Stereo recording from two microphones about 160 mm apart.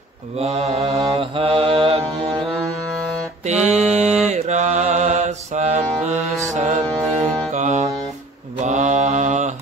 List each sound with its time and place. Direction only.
0.4 s mantra: 40° right (ahead or behind)
3.4 s mantra: 45° right (ahead or behind)
6.5 s music: 45° right (ahead or behind)
8.6 s mantra: 45° right (ahead or behind)